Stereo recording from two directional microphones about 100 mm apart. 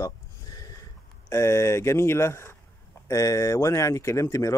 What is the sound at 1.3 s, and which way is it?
Speech, 30° left (ahead or behind).